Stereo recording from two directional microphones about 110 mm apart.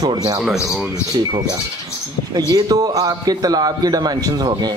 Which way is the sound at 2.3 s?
35° right (ahead or behind).